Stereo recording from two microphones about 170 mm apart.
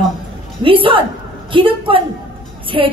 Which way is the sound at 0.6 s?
30° right (ahead or behind).